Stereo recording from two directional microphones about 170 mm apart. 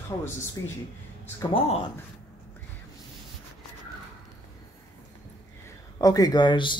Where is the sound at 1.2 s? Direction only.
40° left (ahead or behind).